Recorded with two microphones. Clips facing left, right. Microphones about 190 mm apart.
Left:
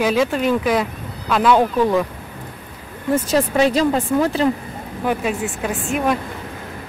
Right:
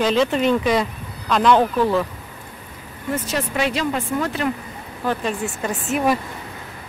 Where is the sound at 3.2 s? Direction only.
35° left (ahead or behind).